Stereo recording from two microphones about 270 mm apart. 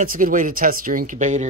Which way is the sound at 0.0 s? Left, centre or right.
Right.